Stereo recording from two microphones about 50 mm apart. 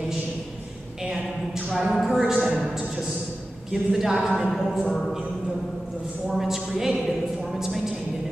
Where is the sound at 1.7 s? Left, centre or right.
Centre.